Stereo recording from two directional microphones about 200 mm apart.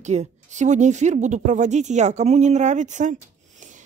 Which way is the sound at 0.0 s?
35° right (ahead or behind).